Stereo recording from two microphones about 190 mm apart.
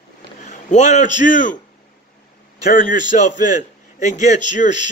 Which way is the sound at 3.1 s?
40° left (ahead or behind).